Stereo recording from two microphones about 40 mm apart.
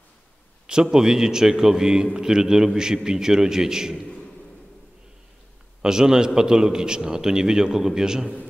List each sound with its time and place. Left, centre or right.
0.7 s a man's voice: centre
5.8 s a man's voice: centre